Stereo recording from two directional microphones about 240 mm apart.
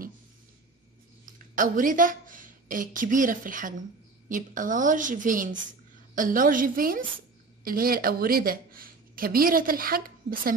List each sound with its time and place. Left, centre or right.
1.5 s a woman's voice: right